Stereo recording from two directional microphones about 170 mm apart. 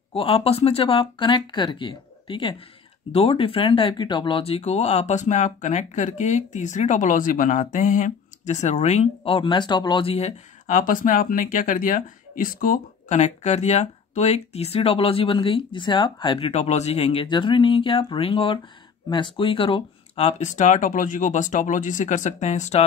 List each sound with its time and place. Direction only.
0.1 s speech: 35° left (ahead or behind)